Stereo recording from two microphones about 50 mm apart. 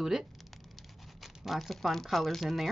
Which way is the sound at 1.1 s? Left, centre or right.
Centre.